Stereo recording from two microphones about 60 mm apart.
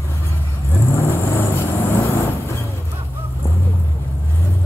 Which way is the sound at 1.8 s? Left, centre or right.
Left.